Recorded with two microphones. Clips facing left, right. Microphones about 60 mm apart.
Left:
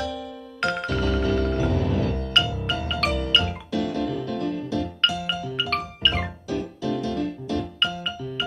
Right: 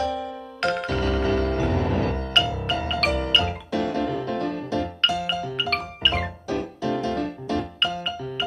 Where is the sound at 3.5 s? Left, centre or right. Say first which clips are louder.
Right 1 dB; right.